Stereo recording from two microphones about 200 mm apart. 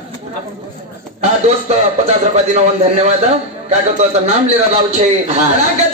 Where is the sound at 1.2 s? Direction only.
35° right (ahead or behind).